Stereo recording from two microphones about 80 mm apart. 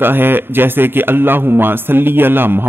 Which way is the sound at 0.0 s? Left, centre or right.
Right.